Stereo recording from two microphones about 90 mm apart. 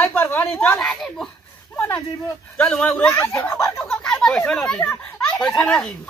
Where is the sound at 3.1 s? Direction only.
30° left (ahead or behind).